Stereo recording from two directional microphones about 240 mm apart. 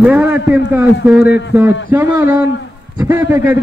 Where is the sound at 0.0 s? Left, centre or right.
Centre.